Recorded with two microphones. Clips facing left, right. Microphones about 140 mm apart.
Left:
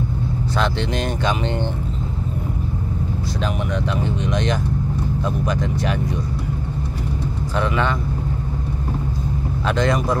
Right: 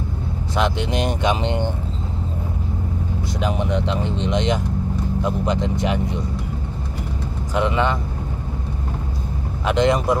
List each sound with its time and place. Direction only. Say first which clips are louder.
0.6 s speech: right 2 dB; 20° right (ahead or behind)
3.4 s speech: right 3 dB; 20° right (ahead or behind)
7.5 s speech: right 2 dB; 20° right (ahead or behind)
9.7 s speech: right 2 dB; 20° right (ahead or behind)